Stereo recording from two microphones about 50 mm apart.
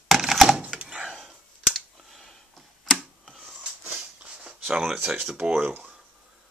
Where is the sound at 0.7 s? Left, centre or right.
Right.